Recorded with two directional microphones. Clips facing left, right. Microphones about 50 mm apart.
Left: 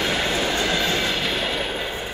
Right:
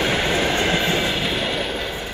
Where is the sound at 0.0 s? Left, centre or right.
Centre.